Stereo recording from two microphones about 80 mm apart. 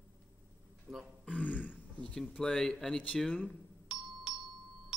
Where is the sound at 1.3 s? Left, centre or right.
Centre.